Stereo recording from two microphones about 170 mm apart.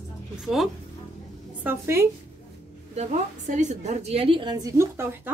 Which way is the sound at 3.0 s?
45° right (ahead or behind).